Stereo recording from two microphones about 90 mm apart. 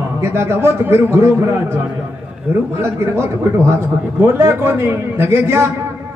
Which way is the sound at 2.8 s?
30° right (ahead or behind).